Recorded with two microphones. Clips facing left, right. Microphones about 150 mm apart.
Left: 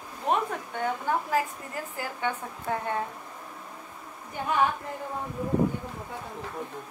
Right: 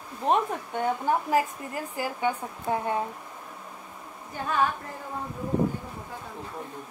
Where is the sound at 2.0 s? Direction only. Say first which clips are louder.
Right 4 dB; 10° right (ahead or behind).